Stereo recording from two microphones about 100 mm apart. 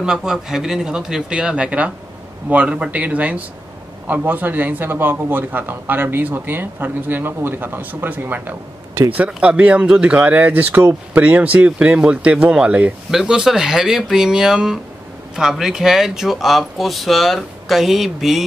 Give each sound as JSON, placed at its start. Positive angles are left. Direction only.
{"t": 0.0, "sound": "a man's voice", "side_deg": -5}